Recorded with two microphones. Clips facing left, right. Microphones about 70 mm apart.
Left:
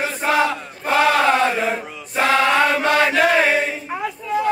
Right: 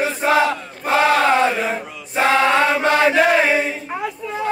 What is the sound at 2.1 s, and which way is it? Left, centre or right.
Choir, right.